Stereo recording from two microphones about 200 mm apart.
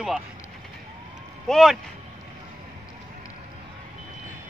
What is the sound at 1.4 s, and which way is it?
Speech, centre (ahead or behind).